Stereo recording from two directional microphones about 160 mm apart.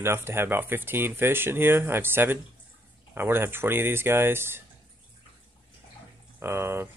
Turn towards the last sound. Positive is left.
turn(degrees=-15)  # may be behind; listen again after turning